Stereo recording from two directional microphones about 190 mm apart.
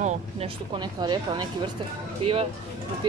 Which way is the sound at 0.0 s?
40° right (ahead or behind).